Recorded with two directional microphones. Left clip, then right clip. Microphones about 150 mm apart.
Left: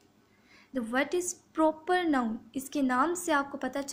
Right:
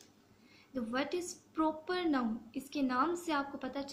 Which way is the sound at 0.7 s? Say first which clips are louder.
Left 7 dB; 50° left (ahead or behind).